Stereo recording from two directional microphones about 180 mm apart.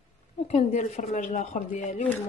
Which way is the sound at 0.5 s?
40° left (ahead or behind).